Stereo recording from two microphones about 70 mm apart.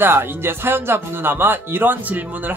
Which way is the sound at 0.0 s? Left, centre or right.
Right.